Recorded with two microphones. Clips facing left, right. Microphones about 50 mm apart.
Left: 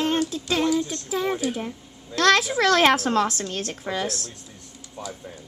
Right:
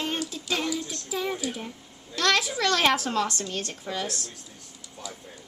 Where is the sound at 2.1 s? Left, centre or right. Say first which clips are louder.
Left 6 dB; left.